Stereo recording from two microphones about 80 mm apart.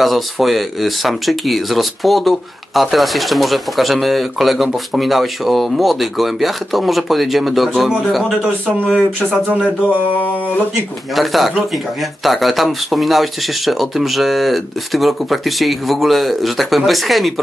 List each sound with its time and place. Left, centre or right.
0.0 s speech: centre
9.3 s speech: centre
11.1 s speech: centre